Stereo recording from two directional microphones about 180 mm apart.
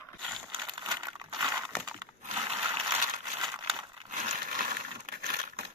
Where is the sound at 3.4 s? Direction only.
25° right (ahead or behind).